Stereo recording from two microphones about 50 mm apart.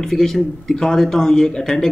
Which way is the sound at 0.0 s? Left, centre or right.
Centre.